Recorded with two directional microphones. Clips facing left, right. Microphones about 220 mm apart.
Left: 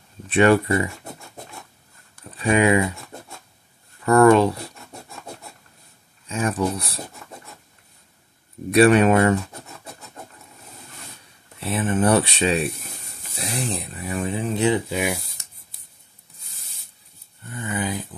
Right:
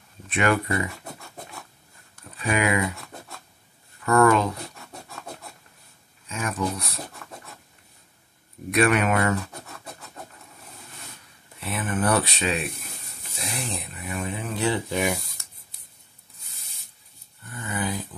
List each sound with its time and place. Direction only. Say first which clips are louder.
0.3 s speech: left 7 dB; 30° left (ahead or behind)
2.3 s speech: left 6 dB; 30° left (ahead or behind)
4.0 s speech: left 5 dB; 30° left (ahead or behind)
6.2 s speech: left 5 dB; 30° left (ahead or behind)
8.7 s speech: left 7 dB; 30° left (ahead or behind)
11.6 s speech: left 5 dB; 25° left (ahead or behind)
14.9 s speech: left 1 dB; 10° left (ahead or behind)
17.6 s a sound: left 3 dB; 20° left (ahead or behind)